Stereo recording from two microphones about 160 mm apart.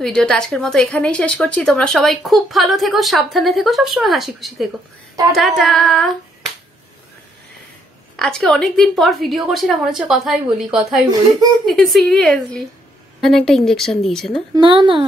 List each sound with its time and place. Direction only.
0.0 s a woman's voice: 5° left (ahead or behind)
8.2 s a woman's voice: 5° left (ahead or behind)
11.1 s speech: 25° right (ahead or behind)
11.6 s a woman's voice: centre (ahead or behind)
14.5 s speech: 30° right (ahead or behind)